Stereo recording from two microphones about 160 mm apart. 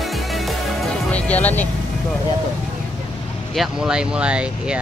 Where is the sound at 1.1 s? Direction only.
10° left (ahead or behind).